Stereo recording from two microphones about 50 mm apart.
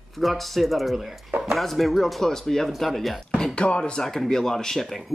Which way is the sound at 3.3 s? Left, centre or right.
Centre.